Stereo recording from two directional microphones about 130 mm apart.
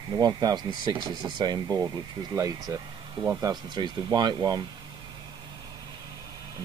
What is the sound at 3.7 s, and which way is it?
Speech, 35° right (ahead or behind).